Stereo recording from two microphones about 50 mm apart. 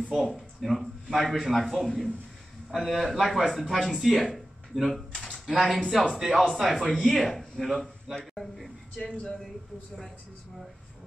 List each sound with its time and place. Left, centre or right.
0.1 s a man's voice: centre
8.9 s speech: left